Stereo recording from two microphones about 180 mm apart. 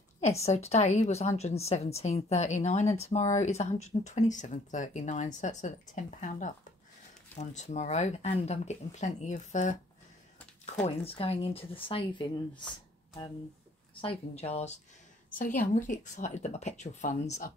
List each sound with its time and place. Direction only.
0.2 s speech: 35° left (ahead or behind)
14.0 s speech: 35° left (ahead or behind)